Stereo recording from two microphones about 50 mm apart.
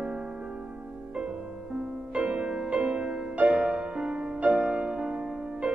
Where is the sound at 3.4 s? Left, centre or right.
Right.